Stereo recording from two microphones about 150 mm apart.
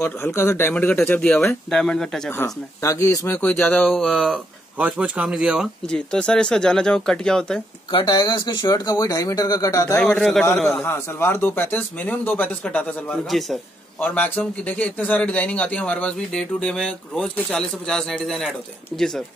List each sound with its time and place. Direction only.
0.0 s speech: 15° left (ahead or behind)
2.3 s speech: 20° left (ahead or behind); by 5.7 s 5° right (ahead or behind)
5.9 s speech: 5° left (ahead or behind)
7.9 s speech: 30° left (ahead or behind)
10.0 s speech: 5° left (ahead or behind)
10.8 s speech: 15° left (ahead or behind)